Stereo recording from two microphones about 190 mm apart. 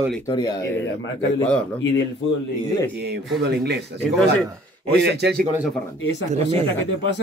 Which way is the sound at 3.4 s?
60° right (ahead or behind).